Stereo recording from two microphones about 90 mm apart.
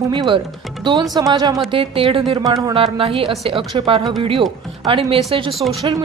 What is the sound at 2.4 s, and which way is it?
Speech, 40° right (ahead or behind).